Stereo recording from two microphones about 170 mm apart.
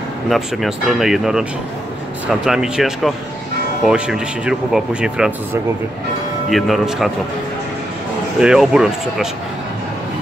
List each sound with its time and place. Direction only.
0.3 s speech: centre (ahead or behind)
6.5 s speech: centre (ahead or behind)
8.4 s speech: 5° right (ahead or behind)